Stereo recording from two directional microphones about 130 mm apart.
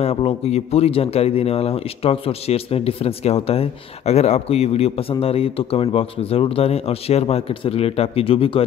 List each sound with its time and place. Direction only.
0.0 s a man's voice: 50° left (ahead or behind)